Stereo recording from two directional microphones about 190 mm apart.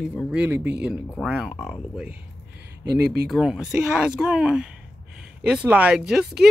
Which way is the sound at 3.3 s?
5° right (ahead or behind).